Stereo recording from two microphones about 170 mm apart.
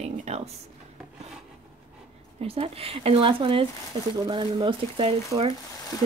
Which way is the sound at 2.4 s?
35° right (ahead or behind).